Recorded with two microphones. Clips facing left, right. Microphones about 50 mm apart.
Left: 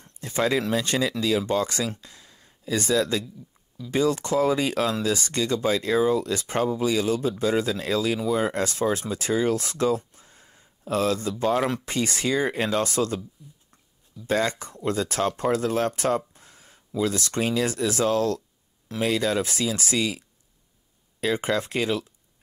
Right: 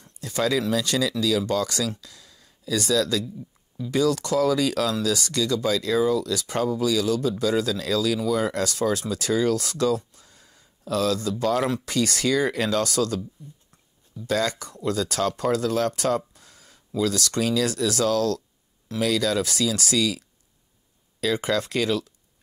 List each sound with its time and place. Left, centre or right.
0.0 s speech: left
14.2 s speech: left